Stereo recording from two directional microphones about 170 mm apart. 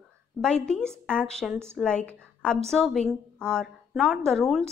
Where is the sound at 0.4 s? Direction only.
5° left (ahead or behind).